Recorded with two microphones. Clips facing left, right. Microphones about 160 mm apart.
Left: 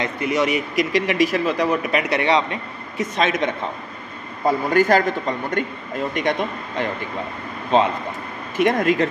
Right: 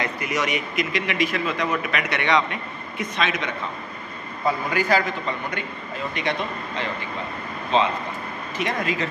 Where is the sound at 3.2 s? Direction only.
45° left (ahead or behind).